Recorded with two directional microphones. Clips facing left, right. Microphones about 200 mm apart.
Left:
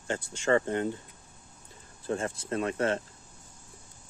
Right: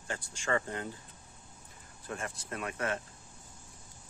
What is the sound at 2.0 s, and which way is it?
Speech, 30° left (ahead or behind).